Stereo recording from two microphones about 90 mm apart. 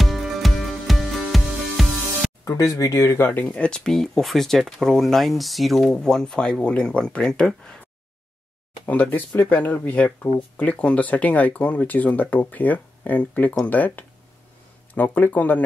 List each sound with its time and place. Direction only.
0.0 s music: centre (ahead or behind)
2.4 s speech: 40° left (ahead or behind); by 7.7 s 10° left (ahead or behind)
8.8 s speech: 20° left (ahead or behind)